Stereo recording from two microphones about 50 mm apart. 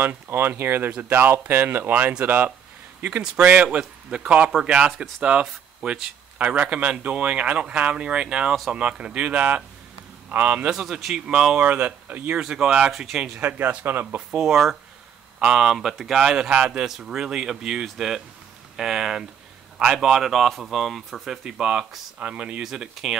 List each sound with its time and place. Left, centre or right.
0.0 s speech: right
3.1 s a man's voice: right
10.7 s a man's voice: centre
12.4 s speech: centre
12.9 s speech: centre
13.4 s a man's voice: right
14.4 s a man's voice: centre
21.5 s speech: centre
22.3 s a man's voice: right
22.6 s speech: centre